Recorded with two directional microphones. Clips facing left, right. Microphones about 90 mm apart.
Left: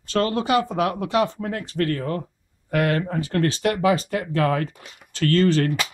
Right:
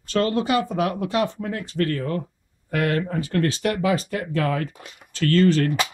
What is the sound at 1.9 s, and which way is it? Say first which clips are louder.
Speech: even; 35° left (ahead or behind).